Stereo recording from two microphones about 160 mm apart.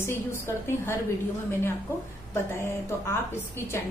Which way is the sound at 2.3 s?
15° left (ahead or behind).